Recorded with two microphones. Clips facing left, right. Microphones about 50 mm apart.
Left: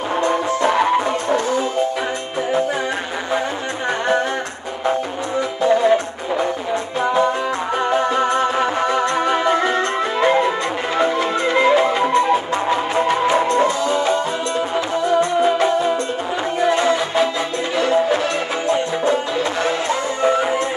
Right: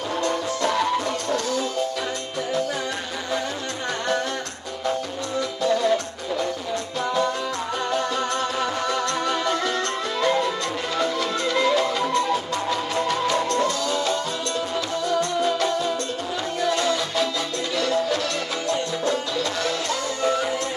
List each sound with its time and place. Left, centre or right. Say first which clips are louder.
0.2 s music: left 6 dB; left
5.6 s music: left 6 dB; left